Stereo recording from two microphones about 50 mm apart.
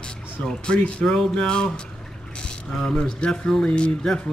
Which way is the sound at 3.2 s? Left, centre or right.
Left.